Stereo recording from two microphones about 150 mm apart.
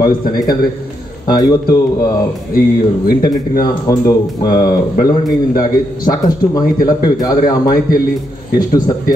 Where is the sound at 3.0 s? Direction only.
75° left (ahead or behind).